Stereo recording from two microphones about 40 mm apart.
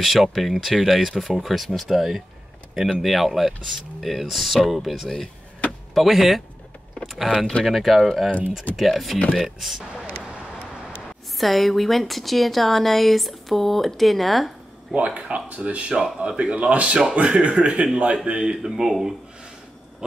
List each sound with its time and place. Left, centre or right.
0.0 s speech: centre
7.6 s speech: centre
8.3 s speech: left
8.7 s speech: centre
11.3 s speech: centre
15.1 s speech: right
18.1 s speech: right
18.7 s speech: centre